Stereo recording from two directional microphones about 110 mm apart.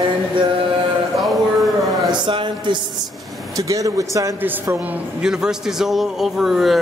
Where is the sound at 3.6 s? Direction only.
30° right (ahead or behind).